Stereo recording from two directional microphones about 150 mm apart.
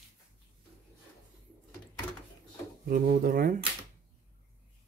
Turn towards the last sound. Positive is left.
turn(degrees=-70)  # may be behind; listen again after turning